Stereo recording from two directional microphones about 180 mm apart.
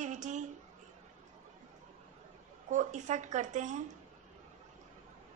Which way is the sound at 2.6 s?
45° right (ahead or behind).